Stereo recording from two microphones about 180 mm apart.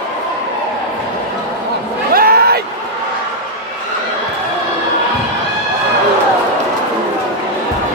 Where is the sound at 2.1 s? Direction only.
55° right (ahead or behind).